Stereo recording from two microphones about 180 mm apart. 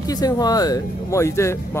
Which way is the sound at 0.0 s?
20° left (ahead or behind).